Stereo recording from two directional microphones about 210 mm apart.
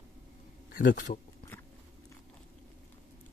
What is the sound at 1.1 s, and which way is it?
Speech, 35° left (ahead or behind).